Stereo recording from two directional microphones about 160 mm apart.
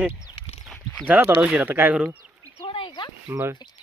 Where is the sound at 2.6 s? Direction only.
30° left (ahead or behind).